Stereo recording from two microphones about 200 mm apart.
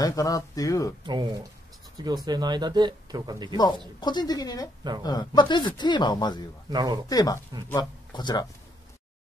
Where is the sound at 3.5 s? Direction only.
20° left (ahead or behind).